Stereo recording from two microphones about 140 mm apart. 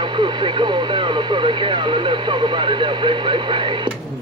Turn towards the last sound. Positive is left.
turn(degrees=-35)  # may be behind; listen again after turning